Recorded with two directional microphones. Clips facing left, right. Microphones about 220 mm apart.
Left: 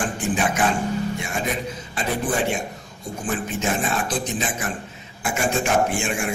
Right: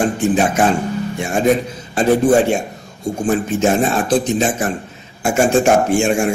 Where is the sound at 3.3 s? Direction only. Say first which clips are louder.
Right 9 dB; 45° right (ahead or behind).